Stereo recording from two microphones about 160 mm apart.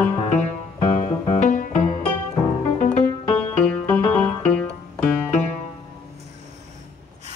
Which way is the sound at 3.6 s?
10° left (ahead or behind).